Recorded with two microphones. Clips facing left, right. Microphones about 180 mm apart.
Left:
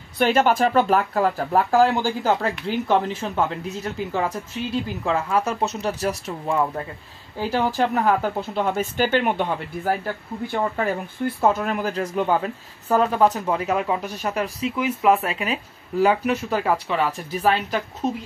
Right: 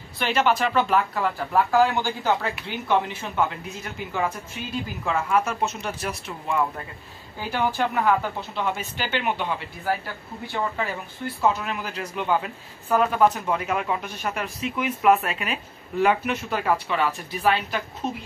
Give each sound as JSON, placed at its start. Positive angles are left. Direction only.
{"t": 0.2, "sound": "speech", "side_deg": 50}